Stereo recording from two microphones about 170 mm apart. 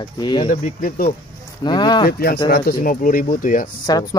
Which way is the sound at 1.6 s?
25° left (ahead or behind).